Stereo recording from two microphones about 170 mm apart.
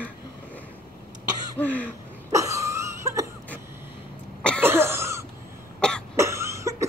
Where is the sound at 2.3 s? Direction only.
20° right (ahead or behind).